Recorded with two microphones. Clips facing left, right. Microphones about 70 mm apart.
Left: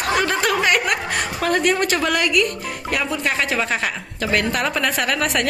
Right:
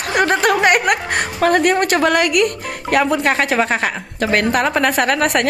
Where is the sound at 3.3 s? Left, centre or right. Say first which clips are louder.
Right 5 dB; right.